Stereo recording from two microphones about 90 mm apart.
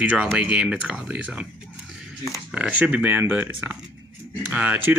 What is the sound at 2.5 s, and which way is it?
Speech, 15° right (ahead or behind).